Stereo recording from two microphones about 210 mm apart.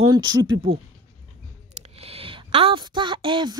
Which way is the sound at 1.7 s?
30° right (ahead or behind).